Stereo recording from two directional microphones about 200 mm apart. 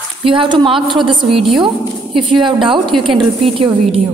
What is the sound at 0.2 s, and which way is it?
Speech, 25° right (ahead or behind).